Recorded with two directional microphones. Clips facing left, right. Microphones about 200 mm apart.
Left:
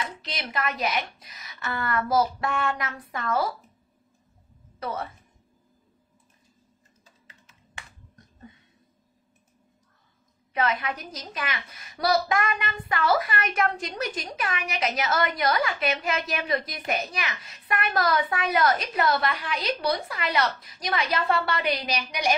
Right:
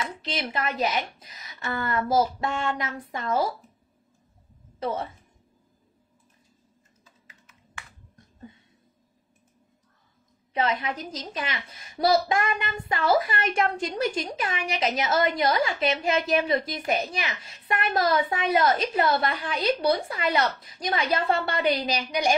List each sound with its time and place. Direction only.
0.2 s a woman's voice: 30° right (ahead or behind)
4.7 s speech: 25° right (ahead or behind)
10.5 s a woman's voice: 25° right (ahead or behind)